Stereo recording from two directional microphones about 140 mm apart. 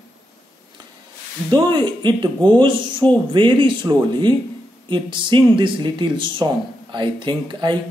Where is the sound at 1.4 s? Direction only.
35° right (ahead or behind).